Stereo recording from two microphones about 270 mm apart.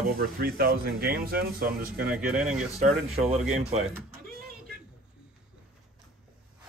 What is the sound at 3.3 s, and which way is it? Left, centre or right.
Speech, right.